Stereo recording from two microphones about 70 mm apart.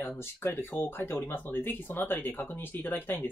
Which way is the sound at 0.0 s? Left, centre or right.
Left.